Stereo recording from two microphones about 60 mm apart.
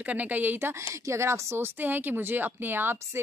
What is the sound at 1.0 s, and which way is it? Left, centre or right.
Speech, right.